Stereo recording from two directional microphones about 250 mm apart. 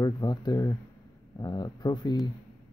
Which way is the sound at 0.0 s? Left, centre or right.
Centre.